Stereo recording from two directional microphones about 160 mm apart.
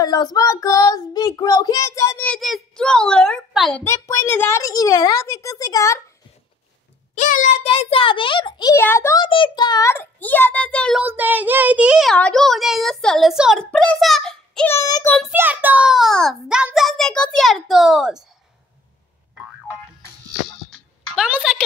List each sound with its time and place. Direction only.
0.0 s child singing: 25° left (ahead or behind); by 3.8 s 5° left (ahead or behind)
3.8 s a woman's voice: 20° left (ahead or behind)
7.2 s a child's voice: 55° left (ahead or behind)
7.6 s a child's voice: 35° left (ahead or behind)
8.7 s a child's voice: 15° left (ahead or behind)
9.2 s a child's voice: 30° left (ahead or behind); by 11.0 s 5° left (ahead or behind)
11.0 s a child's voice: 10° right (ahead or behind)
14.7 s a woman's voice: 20° left (ahead or behind)
15.0 s a child's voice: 5° left (ahead or behind)
15.3 s a child's voice: 10° right (ahead or behind)
20.7 s a sound: 5° right (ahead or behind)